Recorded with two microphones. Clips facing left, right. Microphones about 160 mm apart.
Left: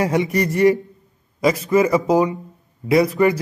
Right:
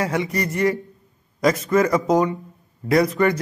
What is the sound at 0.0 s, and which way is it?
Speech, 20° left (ahead or behind).